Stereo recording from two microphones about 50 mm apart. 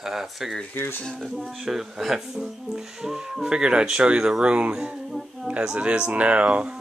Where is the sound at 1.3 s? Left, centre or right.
Centre; by 6.7 s right.